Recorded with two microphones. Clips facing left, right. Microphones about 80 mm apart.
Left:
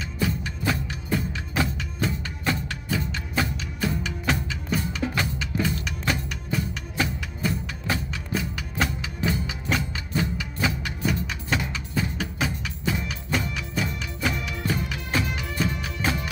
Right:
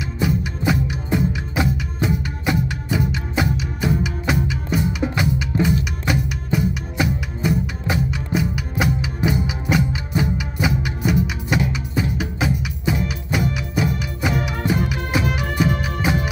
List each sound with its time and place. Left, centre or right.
0.2 s music: centre